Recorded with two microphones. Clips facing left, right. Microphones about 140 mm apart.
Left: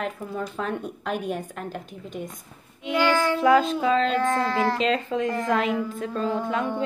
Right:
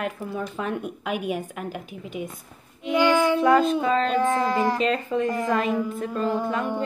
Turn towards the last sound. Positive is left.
turn(degrees=-5)  # may be behind; listen again after turning